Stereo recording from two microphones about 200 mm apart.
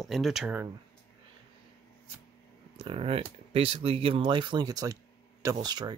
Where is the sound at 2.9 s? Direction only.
30° right (ahead or behind).